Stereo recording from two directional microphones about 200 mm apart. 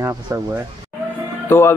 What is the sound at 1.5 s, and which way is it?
Speech, 10° left (ahead or behind).